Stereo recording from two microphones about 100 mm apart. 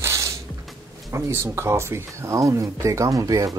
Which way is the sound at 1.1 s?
25° right (ahead or behind).